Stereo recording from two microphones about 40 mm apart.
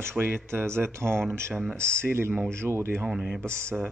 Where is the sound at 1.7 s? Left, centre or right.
Left.